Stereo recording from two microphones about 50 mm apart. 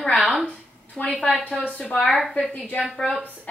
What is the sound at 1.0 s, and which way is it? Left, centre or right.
Speech, left.